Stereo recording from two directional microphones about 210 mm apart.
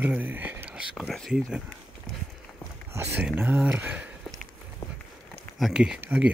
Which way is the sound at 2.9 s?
10° right (ahead or behind).